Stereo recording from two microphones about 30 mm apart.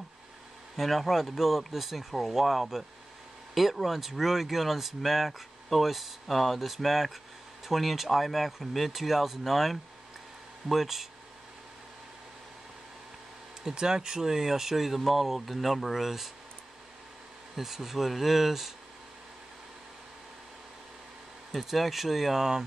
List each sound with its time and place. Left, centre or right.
0.7 s speech: centre
13.7 s speech: right; by 16.3 s centre
17.6 s speech: centre
21.6 s speech: centre
22.4 s speech: centre